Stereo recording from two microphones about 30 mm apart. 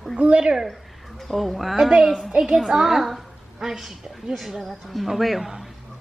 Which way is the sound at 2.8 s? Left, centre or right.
Centre.